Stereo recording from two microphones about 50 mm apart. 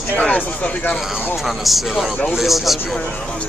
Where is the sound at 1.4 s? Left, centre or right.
Centre.